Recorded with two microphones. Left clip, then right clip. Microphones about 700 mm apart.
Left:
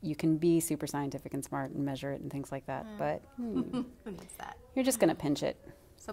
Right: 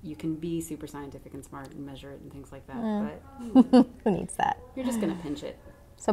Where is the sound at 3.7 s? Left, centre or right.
Right.